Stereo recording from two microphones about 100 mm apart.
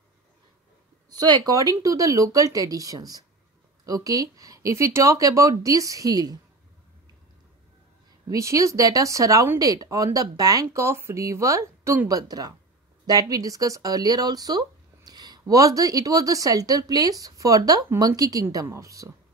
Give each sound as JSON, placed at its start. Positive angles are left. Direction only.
{"t": 1.1, "sound": "speech", "side_deg": -40}
{"t": 8.3, "sound": "speech", "side_deg": -35}
{"t": 12.2, "sound": "speech", "side_deg": -40}